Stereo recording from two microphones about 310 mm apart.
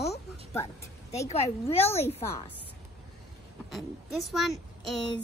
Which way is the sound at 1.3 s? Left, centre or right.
Centre.